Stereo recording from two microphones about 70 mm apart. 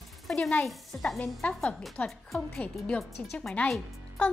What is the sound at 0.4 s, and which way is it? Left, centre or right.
Speech, centre.